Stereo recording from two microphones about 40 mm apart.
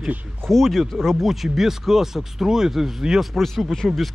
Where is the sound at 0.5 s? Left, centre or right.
Centre.